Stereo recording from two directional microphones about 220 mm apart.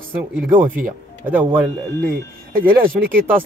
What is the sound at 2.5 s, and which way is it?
Speech, 40° right (ahead or behind).